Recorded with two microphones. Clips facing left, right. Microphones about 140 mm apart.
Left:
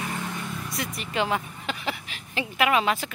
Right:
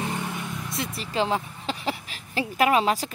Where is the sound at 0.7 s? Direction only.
30° right (ahead or behind).